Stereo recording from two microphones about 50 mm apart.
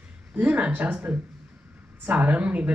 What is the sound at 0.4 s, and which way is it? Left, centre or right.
Speech, right.